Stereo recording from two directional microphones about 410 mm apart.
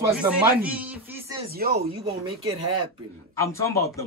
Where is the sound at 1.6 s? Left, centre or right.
Right.